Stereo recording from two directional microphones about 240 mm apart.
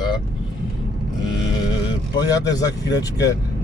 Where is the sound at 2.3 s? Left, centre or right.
Centre.